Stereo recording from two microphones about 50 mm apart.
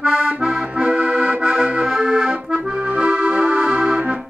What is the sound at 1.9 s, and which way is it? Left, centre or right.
Accordion, right.